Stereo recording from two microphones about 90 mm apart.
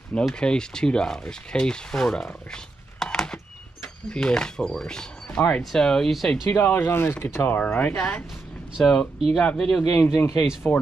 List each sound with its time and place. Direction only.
0.2 s speech: 5° left (ahead or behind)
6.5 s speech: 20° left (ahead or behind)
7.4 s speech: 20° left (ahead or behind)
10.0 s speech: 30° left (ahead or behind)
10.7 s speech: 10° left (ahead or behind)